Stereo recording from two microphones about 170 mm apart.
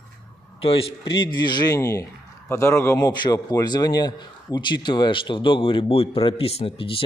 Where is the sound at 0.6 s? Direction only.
35° left (ahead or behind).